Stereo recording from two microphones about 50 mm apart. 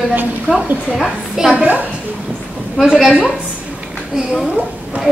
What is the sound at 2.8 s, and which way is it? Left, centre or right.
Speech, centre.